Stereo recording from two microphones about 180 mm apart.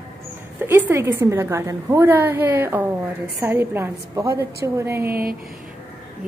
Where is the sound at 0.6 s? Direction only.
10° right (ahead or behind).